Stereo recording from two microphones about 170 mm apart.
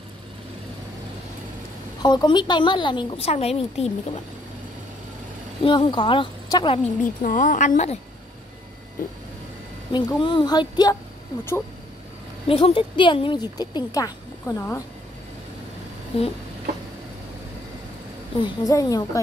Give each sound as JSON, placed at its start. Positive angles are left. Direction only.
{"t": 2.0, "sound": "a woman's voice", "side_deg": 25}
{"t": 5.6, "sound": "a woman's voice", "side_deg": 30}
{"t": 7.0, "sound": "speech", "side_deg": 50}
{"t": 9.9, "sound": "a woman's voice", "side_deg": 30}
{"t": 12.4, "sound": "a woman's voice", "side_deg": 35}
{"t": 16.1, "sound": "a sound", "side_deg": 35}
{"t": 18.4, "sound": "a woman's voice", "side_deg": 20}